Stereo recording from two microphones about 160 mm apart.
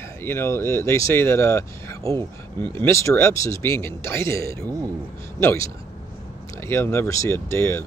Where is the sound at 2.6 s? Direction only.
15° left (ahead or behind).